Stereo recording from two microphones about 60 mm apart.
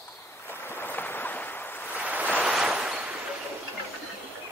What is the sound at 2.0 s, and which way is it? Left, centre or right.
Waves, right.